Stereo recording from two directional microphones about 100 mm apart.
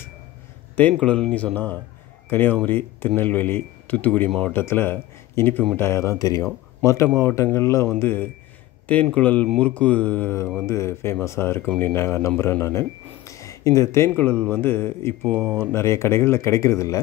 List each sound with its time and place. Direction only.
0.9 s speech: 10° left (ahead or behind)
10.7 s speech: 25° left (ahead or behind)